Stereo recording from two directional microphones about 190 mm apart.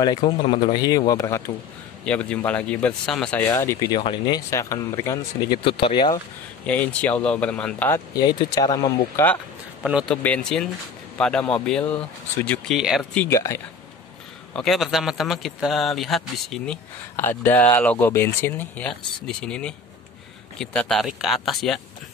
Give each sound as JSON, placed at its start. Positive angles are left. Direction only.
{"t": 0.0, "sound": "speech", "side_deg": 25}
{"t": 2.0, "sound": "speech", "side_deg": 5}
{"t": 4.5, "sound": "speech", "side_deg": 15}
{"t": 6.6, "sound": "speech", "side_deg": 5}
{"t": 8.2, "sound": "speech", "side_deg": 20}
{"t": 9.8, "sound": "speech", "side_deg": -5}
{"t": 10.2, "sound": "speech", "side_deg": 5}
{"t": 14.5, "sound": "speech", "side_deg": 0}